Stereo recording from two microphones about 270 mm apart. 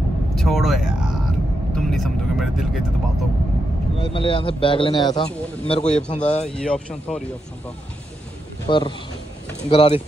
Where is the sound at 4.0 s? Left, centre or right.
Centre.